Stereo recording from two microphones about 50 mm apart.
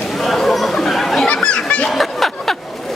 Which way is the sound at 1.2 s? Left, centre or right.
Centre.